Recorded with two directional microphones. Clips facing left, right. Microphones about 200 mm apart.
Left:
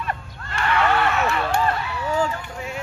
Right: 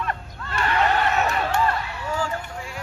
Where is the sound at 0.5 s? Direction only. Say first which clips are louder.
Left 1 dB; 35° right (ahead or behind).